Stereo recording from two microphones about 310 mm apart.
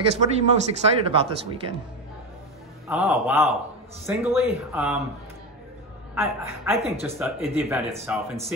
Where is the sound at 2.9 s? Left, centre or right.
Centre.